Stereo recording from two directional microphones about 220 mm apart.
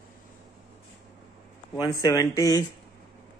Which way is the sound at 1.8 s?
15° left (ahead or behind).